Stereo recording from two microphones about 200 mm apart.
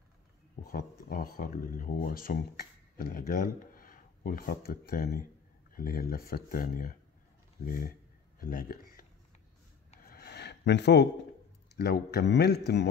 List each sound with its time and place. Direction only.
0.7 s speech: 45° left (ahead or behind)
10.0 s a sound: 50° left (ahead or behind)
11.7 s speech: 55° left (ahead or behind)